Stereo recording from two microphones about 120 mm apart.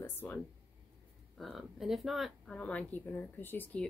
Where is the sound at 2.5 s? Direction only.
10° left (ahead or behind).